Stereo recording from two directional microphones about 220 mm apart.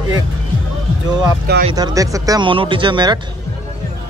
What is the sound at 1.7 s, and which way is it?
Speech, 20° right (ahead or behind).